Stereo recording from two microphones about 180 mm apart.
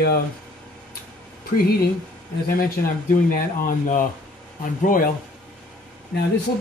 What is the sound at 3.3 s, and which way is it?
Speech, 55° left (ahead or behind).